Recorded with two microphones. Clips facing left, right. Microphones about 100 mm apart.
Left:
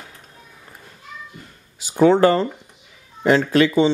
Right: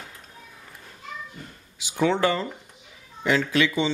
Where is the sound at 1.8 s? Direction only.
40° left (ahead or behind).